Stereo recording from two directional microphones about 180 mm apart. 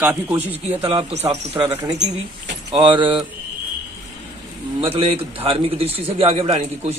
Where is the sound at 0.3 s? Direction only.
10° right (ahead or behind).